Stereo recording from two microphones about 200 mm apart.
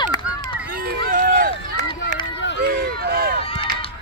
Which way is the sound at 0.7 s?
45° right (ahead or behind).